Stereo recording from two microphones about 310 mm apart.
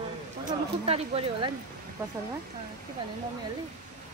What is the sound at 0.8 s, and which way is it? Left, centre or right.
Speech, centre.